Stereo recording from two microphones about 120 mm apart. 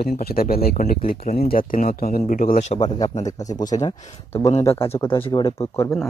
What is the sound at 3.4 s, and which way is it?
Speech, 30° left (ahead or behind).